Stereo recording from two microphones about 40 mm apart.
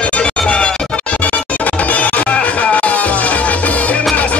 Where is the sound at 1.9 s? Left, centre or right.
Left.